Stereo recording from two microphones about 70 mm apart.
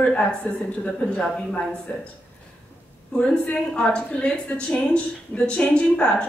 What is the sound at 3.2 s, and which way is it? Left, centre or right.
A woman's voice, centre.